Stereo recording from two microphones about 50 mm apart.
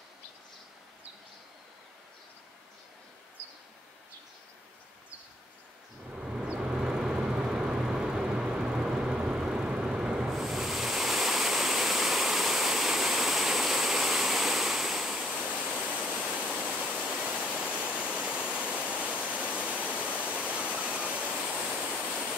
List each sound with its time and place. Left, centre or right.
6.1 s vehicle: centre
16.0 s waterfall: centre